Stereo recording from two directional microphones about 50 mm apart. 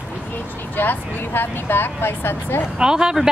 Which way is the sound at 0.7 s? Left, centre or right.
Left.